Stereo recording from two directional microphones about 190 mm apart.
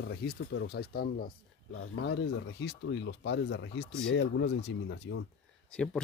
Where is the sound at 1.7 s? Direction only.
70° left (ahead or behind).